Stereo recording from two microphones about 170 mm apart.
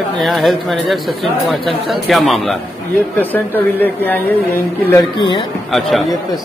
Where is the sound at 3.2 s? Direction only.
10° left (ahead or behind).